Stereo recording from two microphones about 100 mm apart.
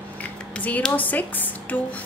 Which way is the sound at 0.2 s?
15° left (ahead or behind).